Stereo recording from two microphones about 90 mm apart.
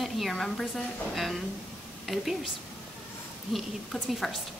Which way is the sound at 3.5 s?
Centre (ahead or behind).